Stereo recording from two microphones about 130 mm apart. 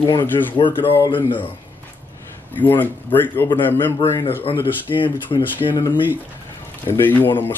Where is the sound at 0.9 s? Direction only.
15° left (ahead or behind).